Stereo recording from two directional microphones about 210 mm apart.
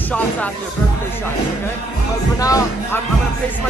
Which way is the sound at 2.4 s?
15° left (ahead or behind).